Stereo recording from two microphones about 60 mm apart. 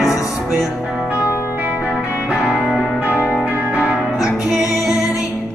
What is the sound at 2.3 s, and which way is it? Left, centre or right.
Music, centre.